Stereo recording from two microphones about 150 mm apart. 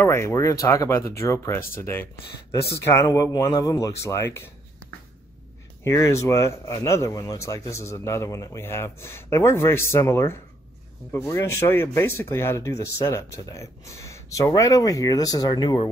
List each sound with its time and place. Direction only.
0.0 s speech: 15° left (ahead or behind)
5.9 s speech: 20° left (ahead or behind)